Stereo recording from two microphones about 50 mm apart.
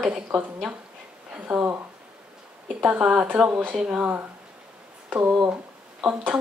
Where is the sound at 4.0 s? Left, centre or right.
Right.